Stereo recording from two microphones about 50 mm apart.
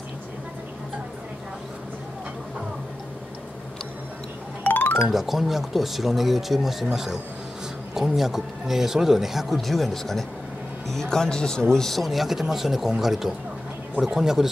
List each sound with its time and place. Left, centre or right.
4.6 s music: left
5.0 s speech: centre